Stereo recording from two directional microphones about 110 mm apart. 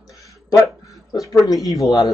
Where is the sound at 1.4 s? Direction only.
30° left (ahead or behind).